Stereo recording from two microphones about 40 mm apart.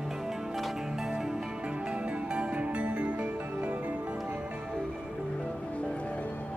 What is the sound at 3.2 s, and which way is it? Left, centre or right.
Music, right.